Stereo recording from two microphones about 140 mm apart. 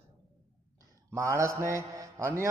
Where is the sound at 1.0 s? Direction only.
20° right (ahead or behind).